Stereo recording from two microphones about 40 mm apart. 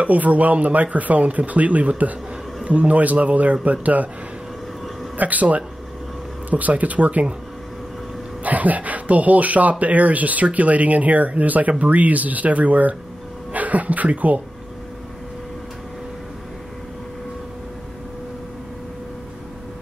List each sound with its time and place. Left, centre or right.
0.0 s speech: right
5.1 s speech: right
8.5 s speech: right